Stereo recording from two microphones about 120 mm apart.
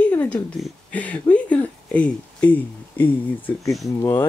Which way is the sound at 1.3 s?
10° left (ahead or behind).